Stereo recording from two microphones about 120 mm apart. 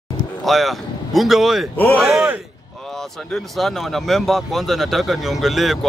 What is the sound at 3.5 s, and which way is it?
Speech, centre (ahead or behind).